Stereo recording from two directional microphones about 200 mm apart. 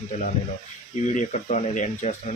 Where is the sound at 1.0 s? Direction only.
35° left (ahead or behind).